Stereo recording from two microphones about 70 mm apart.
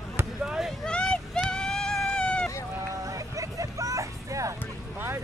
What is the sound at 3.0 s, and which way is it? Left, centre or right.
Music, right.